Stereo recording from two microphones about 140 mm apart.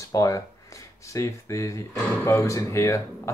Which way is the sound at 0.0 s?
25° left (ahead or behind).